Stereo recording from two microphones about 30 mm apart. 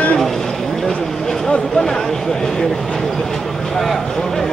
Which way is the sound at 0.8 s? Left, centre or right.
Centre.